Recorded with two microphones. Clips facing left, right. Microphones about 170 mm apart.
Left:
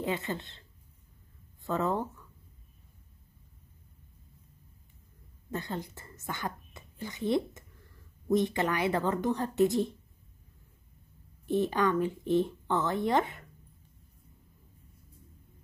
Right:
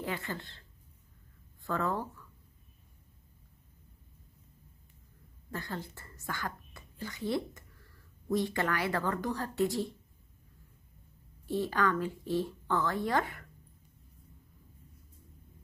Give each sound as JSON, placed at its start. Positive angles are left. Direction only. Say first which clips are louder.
{"t": 0.0, "sound": "speech", "louder": "left 4 dB", "side_deg": 20}
{"t": 5.5, "sound": "speech", "louder": "left 4 dB", "side_deg": 20}
{"t": 11.4, "sound": "speech", "louder": "left 3 dB", "side_deg": 20}